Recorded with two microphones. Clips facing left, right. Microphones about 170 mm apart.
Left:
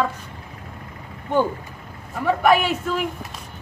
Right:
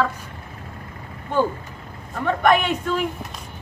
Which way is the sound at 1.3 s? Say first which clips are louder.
Left 1 dB; 20° left (ahead or behind).